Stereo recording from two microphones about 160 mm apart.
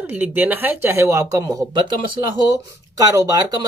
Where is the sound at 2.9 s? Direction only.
20° right (ahead or behind).